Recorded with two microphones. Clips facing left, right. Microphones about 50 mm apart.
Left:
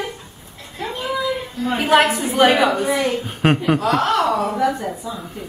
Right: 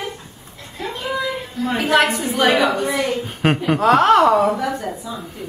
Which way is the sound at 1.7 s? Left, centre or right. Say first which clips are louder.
Left 1 dB; centre.